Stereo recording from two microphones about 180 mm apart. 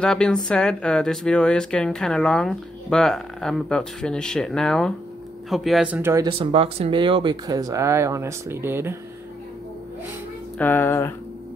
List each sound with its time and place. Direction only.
0.0 s speech: 5° left (ahead or behind); by 6.2 s 10° right (ahead or behind)
6.2 s speech: 30° right (ahead or behind); by 8.9 s 15° right (ahead or behind)
10.6 s speech: 10° left (ahead or behind)